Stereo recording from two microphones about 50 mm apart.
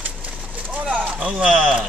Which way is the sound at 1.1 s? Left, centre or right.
Centre.